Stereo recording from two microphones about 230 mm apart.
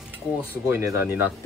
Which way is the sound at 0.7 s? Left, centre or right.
Centre.